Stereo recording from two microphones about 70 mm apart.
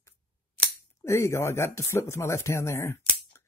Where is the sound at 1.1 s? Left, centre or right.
Left.